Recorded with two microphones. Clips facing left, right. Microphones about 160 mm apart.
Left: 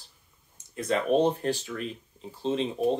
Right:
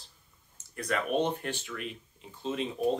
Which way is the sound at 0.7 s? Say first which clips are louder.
Left 5 dB; 25° left (ahead or behind).